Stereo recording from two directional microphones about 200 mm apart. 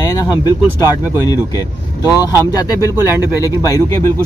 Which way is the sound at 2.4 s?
15° left (ahead or behind).